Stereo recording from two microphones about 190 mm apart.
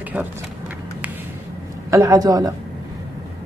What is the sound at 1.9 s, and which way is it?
Speech, 20° right (ahead or behind).